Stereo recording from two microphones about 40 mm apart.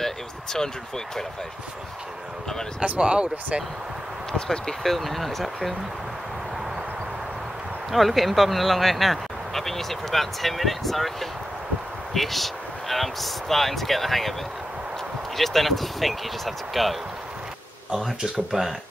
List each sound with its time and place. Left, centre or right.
0.0 s speech: centre
3.0 s speech: right
4.3 s speech: centre
7.9 s speech: centre
15.3 s speech: centre
18.2 s speech: centre